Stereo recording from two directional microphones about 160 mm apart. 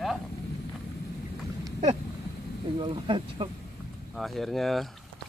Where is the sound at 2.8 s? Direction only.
30° right (ahead or behind).